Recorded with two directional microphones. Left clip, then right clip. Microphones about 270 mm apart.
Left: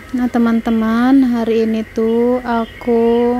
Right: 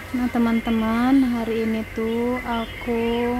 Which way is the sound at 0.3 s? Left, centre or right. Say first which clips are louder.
Left 6 dB; centre.